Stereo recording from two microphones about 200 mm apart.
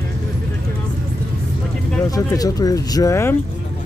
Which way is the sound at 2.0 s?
20° left (ahead or behind).